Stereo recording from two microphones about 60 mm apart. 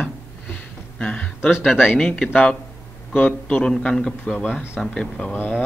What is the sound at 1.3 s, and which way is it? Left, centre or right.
Speech, left.